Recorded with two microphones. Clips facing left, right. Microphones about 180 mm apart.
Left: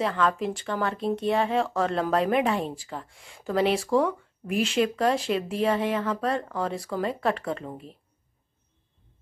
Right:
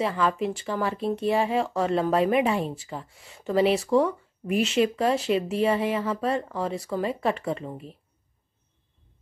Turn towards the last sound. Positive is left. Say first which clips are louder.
# right 2 dB
turn(degrees=0)  # may be behind; listen again after turning